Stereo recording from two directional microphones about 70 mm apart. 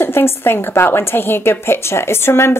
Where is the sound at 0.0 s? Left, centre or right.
Left.